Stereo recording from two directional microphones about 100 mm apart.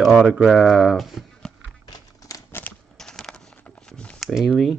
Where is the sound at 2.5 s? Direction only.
20° left (ahead or behind).